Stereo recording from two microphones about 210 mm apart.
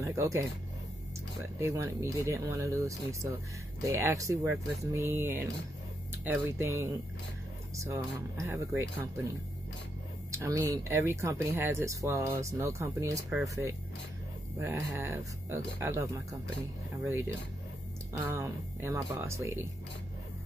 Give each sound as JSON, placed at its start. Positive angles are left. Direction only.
{"t": 0.0, "sound": "speech", "side_deg": -15}
{"t": 10.3, "sound": "speech", "side_deg": -15}
{"t": 14.6, "sound": "speech", "side_deg": -15}